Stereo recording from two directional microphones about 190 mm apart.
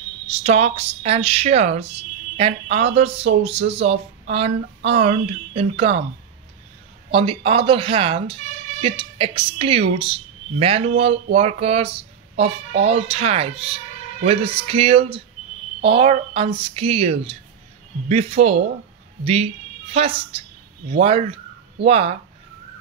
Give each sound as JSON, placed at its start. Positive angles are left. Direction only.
{"t": 0.3, "sound": "speech", "side_deg": -35}
{"t": 7.1, "sound": "a woman's voice", "side_deg": -30}